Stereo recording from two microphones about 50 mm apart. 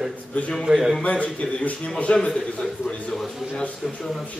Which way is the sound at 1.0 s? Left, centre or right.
Left.